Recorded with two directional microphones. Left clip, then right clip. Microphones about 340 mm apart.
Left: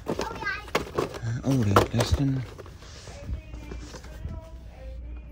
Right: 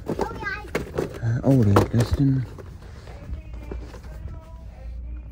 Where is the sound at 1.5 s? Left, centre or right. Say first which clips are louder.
Even; right.